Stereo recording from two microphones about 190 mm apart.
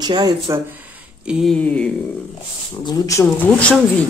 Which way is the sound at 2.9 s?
15° left (ahead or behind).